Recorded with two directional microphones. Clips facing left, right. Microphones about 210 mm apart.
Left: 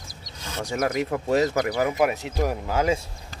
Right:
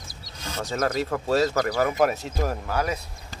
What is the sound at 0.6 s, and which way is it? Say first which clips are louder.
Speech: left 1 dB; 15° left (ahead or behind).